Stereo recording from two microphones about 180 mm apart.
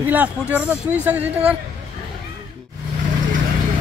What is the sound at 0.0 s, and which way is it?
Speech, 10° right (ahead or behind).